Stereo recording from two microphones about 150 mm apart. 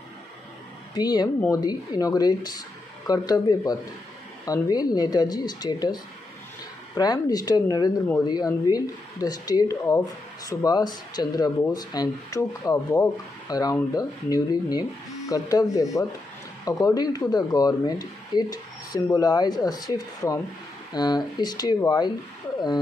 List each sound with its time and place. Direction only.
0.9 s speech: 25° left (ahead or behind)
7.0 s speech: 25° left (ahead or behind)